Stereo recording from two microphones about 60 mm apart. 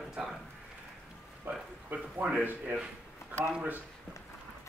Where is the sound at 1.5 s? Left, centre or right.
Right.